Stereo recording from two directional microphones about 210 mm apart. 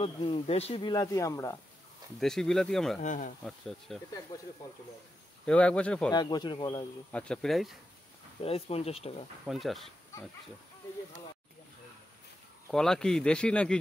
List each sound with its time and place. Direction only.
0.0 s speech: 25° left (ahead or behind)
2.1 s speech: centre (ahead or behind)
3.0 s speech: 35° left (ahead or behind)
3.4 s speech: centre (ahead or behind)
4.3 s speech: 20° left (ahead or behind)
5.4 s speech: 5° left (ahead or behind)
6.1 s speech: 20° left (ahead or behind)
7.1 s speech: 5° left (ahead or behind)
8.4 s speech: 25° left (ahead or behind)
9.5 s speech: centre (ahead or behind)
12.7 s speech: centre (ahead or behind)